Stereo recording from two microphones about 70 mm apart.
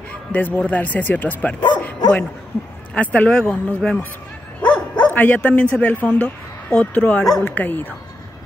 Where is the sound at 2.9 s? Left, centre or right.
Centre.